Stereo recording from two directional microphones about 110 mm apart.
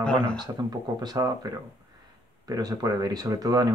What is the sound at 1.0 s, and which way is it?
Speech, 35° right (ahead or behind).